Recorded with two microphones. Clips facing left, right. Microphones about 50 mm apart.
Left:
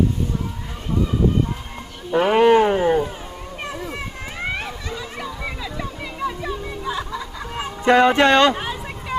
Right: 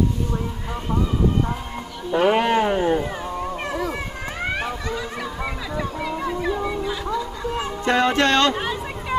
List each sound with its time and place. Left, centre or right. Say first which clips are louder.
2.0 s a sound: left 3 dB; centre
6.9 s music: right 2 dB; centre
7.4 s speech: left 6 dB; centre